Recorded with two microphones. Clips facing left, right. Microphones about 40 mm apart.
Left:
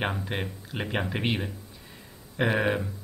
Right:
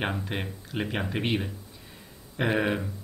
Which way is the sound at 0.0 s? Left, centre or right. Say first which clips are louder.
Left 1 dB; centre.